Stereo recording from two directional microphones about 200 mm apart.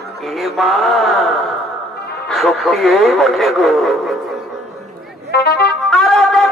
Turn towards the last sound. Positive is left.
turn(degrees=0)  # may be behind; listen again after turning